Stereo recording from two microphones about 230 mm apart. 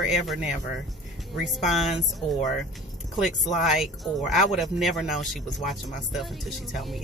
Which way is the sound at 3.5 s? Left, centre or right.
Centre.